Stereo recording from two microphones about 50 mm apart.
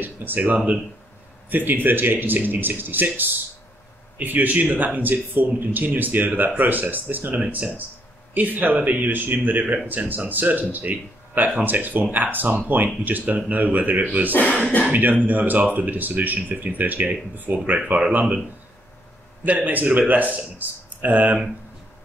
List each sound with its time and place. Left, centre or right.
0.0 s speech: right
14.3 s speech: left
14.9 s speech: right
19.4 s speech: right